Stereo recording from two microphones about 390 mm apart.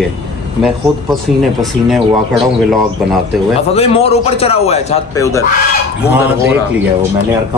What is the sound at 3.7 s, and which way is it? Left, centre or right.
Speech, centre.